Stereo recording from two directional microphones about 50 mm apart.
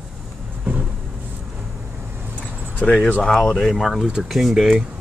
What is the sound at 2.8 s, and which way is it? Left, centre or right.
Speech, left.